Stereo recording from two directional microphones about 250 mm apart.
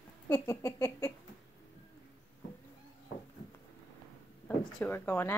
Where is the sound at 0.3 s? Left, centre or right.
Centre.